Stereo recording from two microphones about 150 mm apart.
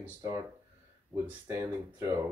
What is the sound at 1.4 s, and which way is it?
Speech, 20° right (ahead or behind).